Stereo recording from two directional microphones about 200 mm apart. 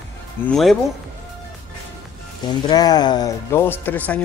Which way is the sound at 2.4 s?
20° left (ahead or behind).